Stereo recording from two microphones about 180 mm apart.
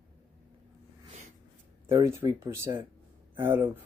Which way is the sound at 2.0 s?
15° right (ahead or behind).